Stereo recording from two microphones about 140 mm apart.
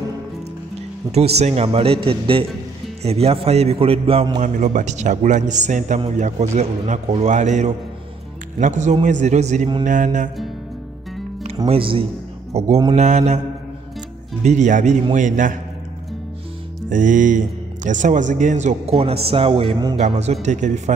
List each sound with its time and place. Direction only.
1.1 s a man's voice: 50° right (ahead or behind)
4.4 s speech: 60° right (ahead or behind)
9.8 s music: 65° right (ahead or behind)
11.6 s a man's voice: 40° right (ahead or behind)
14.4 s speech: 55° right (ahead or behind)
16.9 s speech: 65° right (ahead or behind)
18.9 s a man's voice: 45° right (ahead or behind)
20.4 s speech: 60° right (ahead or behind)